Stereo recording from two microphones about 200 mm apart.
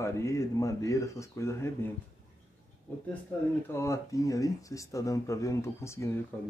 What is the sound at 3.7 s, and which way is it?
Speech, 15° left (ahead or behind).